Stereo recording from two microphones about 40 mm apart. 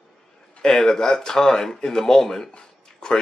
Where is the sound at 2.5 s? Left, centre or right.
Left.